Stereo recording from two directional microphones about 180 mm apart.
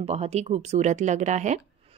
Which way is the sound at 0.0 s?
35° right (ahead or behind).